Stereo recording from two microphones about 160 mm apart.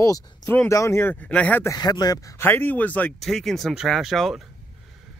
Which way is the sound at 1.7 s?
25° left (ahead or behind).